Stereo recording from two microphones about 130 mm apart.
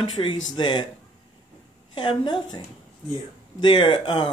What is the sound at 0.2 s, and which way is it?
Speech, 35° left (ahead or behind).